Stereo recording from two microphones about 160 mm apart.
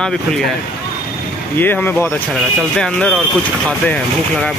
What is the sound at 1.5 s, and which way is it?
Speech, 10° left (ahead or behind).